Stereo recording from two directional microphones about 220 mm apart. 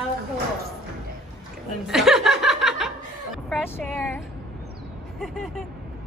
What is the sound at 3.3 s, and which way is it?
Vehicle, 5° left (ahead or behind).